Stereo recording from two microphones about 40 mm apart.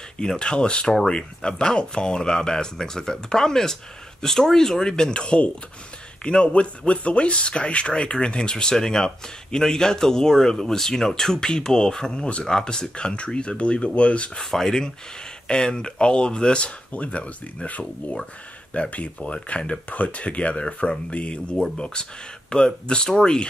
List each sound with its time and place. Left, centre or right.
0.4 s speech: left
14.4 s speech: centre